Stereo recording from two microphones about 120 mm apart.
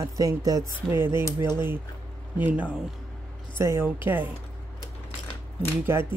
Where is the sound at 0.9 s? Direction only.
20° right (ahead or behind).